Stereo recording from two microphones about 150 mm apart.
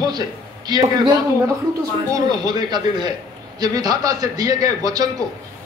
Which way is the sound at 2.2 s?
30° right (ahead or behind).